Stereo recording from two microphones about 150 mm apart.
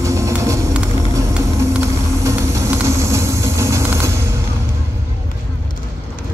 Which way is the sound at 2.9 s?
20° right (ahead or behind).